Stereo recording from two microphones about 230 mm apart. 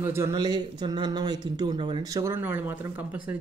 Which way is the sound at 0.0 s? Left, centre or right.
Centre.